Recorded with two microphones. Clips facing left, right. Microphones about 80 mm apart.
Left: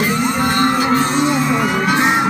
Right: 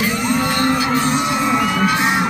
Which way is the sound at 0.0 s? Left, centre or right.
Left.